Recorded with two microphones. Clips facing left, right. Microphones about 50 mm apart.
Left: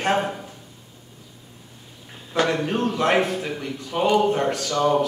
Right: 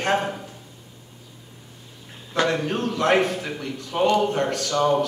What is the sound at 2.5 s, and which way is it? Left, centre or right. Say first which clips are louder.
Speech: left 1 dB; centre.